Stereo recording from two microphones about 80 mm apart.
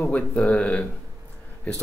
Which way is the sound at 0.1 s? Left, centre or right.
Centre.